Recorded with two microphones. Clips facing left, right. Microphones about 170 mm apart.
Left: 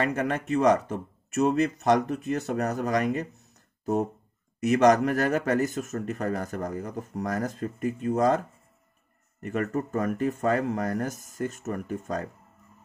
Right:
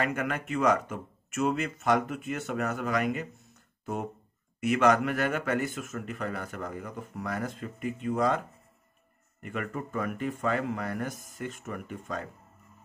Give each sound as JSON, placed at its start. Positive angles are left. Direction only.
{"t": 0.0, "sound": "speech", "side_deg": 35}
{"t": 9.4, "sound": "speech", "side_deg": 40}